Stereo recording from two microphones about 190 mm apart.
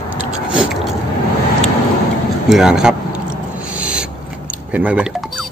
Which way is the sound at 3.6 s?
5° right (ahead or behind).